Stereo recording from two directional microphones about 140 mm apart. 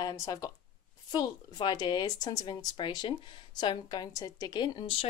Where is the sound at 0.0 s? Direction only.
25° left (ahead or behind).